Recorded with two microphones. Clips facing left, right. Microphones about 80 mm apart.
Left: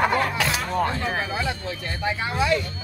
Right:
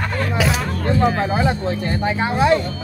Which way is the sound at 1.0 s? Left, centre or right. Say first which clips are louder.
Right 9 dB; right.